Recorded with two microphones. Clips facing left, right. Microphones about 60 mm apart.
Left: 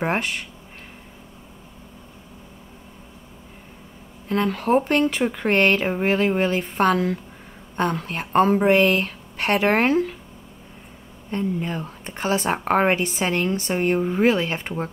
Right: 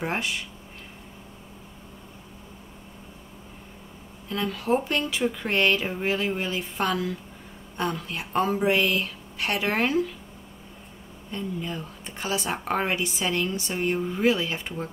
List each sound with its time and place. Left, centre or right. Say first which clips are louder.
0.0 s speech: left 5 dB; left
4.3 s speech: left 5 dB; left
11.2 s a woman's voice: left 6 dB; left